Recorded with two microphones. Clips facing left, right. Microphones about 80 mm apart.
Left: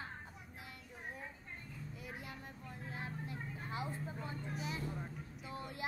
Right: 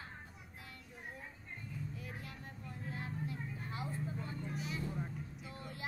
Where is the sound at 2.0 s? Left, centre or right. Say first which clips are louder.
Even; centre.